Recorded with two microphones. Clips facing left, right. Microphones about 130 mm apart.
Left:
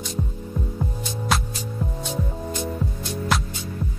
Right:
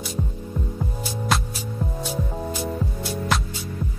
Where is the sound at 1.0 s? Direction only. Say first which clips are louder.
Right 1 dB; centre (ahead or behind).